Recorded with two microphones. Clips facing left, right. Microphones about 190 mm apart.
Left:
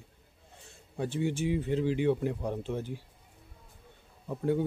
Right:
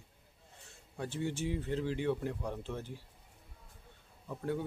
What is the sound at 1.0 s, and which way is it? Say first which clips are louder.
Speech: left 6 dB; 15° left (ahead or behind).